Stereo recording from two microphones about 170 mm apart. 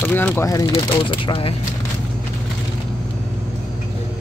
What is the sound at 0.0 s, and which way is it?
Speech, 10° left (ahead or behind).